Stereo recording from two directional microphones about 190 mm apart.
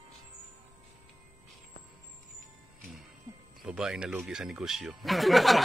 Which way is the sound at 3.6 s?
5° right (ahead or behind).